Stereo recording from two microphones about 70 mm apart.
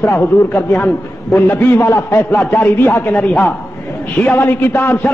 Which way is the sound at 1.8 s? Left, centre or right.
Left.